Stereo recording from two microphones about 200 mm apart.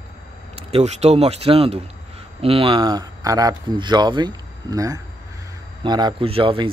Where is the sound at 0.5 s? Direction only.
30° right (ahead or behind).